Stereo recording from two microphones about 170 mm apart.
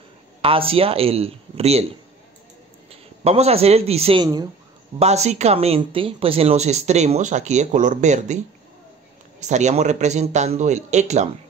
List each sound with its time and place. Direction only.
0.4 s a man's voice: 35° right (ahead or behind)
4.9 s speech: 40° right (ahead or behind)
9.4 s a man's voice: 45° right (ahead or behind)